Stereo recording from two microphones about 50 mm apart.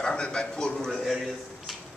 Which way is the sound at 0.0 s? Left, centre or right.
Centre.